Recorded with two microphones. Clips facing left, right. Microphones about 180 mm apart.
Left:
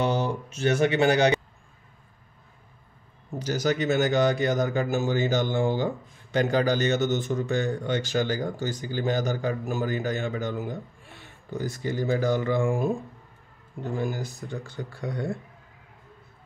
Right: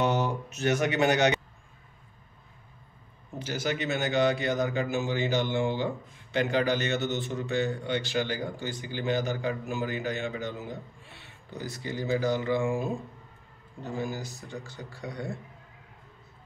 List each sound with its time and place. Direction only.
0.0 s speech: 30° left (ahead or behind)
3.3 s speech: 40° left (ahead or behind)
14.1 s speech: 55° left (ahead or behind)